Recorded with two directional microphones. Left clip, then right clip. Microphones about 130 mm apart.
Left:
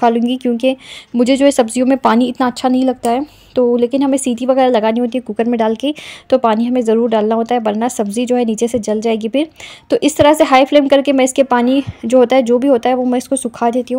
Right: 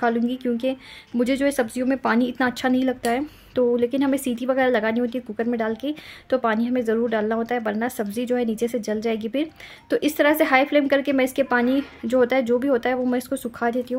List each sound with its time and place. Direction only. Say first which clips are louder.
0.0 s a woman's voice: left 9 dB; 45° left (ahead or behind)
5.4 s speech: left 10 dB; 50° left (ahead or behind)